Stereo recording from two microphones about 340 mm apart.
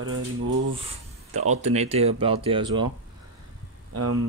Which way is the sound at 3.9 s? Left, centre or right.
Right.